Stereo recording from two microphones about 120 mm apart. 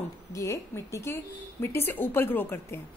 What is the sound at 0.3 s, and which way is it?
A woman's voice, 25° left (ahead or behind).